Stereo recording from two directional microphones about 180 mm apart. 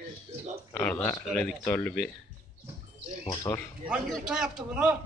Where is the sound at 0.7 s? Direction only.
10° left (ahead or behind).